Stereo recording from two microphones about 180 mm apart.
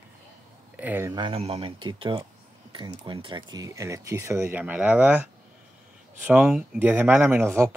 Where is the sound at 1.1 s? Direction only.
30° right (ahead or behind).